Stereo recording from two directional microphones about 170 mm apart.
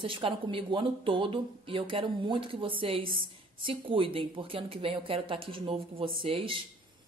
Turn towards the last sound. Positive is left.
turn(degrees=-30)  # may be behind; listen again after turning